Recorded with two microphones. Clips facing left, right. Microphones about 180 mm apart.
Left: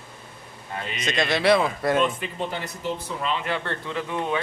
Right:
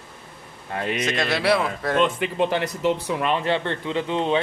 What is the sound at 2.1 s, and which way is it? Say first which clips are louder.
Speech: right 8 dB; 80° right.